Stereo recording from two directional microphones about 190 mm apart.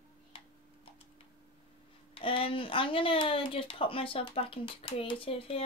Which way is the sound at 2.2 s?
30° left (ahead or behind).